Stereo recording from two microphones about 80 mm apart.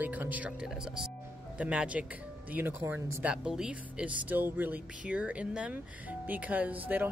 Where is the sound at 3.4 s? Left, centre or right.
Centre.